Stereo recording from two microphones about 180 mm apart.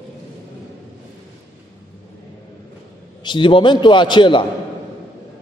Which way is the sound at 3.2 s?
25° left (ahead or behind).